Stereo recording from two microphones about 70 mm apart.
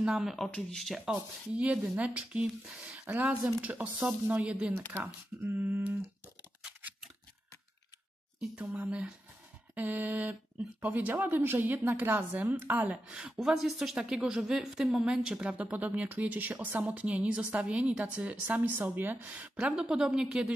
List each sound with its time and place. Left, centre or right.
0.0 s speech: centre
0.5 s speech: centre
1.5 s speech: centre
3.1 s speech: right
5.4 s a sound: right
8.5 s speech: centre
13.1 s speech: centre
15.3 s speech: centre